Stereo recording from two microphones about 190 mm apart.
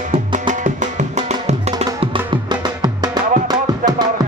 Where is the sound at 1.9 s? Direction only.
25° right (ahead or behind).